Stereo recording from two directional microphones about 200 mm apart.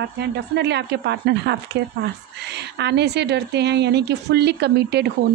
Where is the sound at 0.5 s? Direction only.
60° right (ahead or behind).